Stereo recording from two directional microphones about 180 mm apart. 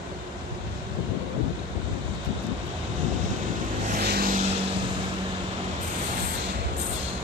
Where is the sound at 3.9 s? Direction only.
55° right (ahead or behind).